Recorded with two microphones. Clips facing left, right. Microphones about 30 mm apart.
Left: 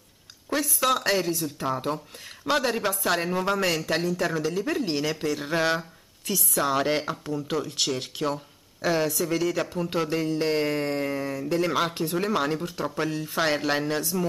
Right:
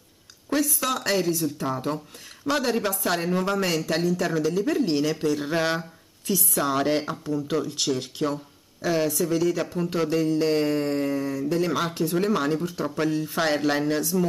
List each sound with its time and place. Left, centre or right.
0.7 s speech: centre
9.3 s speech: centre